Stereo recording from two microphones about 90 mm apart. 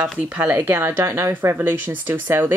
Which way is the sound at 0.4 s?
20° right (ahead or behind).